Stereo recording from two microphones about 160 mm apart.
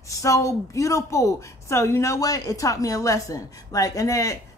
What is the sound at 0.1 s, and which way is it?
A woman's voice, 20° left (ahead or behind).